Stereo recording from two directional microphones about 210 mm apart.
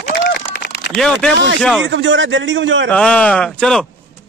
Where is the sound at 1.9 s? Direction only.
60° right (ahead or behind).